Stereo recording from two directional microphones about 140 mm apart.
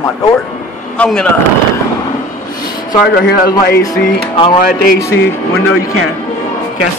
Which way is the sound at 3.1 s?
90° left.